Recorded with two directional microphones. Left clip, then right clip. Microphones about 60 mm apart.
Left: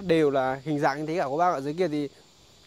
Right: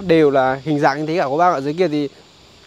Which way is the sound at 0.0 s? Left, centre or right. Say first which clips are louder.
Right 9 dB; left.